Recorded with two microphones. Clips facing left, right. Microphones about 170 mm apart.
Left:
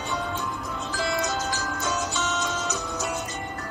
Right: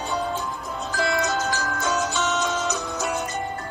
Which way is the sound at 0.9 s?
65° right (ahead or behind).